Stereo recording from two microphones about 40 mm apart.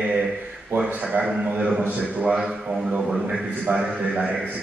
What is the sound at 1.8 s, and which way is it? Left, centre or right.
Speech, right.